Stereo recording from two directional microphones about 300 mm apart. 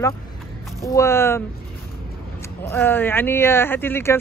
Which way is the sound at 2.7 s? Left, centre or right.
Centre.